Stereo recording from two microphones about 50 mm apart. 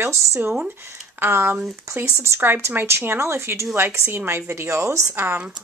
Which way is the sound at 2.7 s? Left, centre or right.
Right.